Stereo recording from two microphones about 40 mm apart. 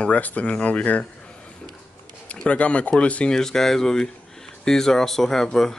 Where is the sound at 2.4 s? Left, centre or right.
Left.